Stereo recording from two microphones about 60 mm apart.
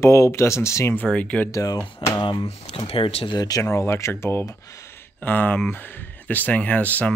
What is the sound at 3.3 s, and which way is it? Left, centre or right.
Speech, left.